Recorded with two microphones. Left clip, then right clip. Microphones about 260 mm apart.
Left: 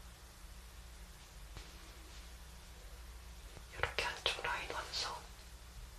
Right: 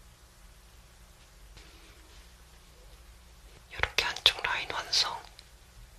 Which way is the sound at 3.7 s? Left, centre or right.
Right.